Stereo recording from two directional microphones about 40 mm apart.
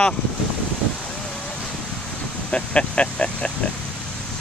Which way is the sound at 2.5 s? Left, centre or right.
Left.